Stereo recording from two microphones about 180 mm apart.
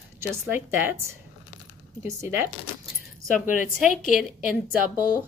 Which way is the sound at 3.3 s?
45° left (ahead or behind).